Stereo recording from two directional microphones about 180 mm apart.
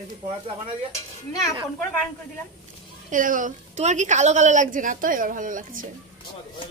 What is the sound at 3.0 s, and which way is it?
A woman's voice, 50° right (ahead or behind).